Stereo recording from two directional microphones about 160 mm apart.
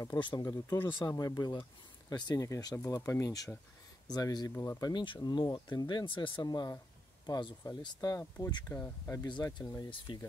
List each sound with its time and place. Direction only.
0.0 s speech: 25° left (ahead or behind)
8.7 s speech: 15° left (ahead or behind)